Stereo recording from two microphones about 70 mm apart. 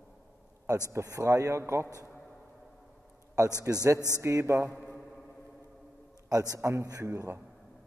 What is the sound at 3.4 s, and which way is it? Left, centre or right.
A man's voice, right.